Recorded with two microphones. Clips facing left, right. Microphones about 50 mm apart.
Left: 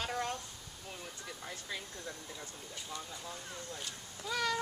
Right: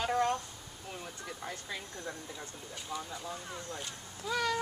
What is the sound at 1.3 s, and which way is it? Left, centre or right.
Speech, centre.